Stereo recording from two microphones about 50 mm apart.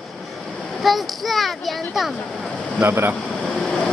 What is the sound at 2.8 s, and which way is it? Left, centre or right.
Speech, right.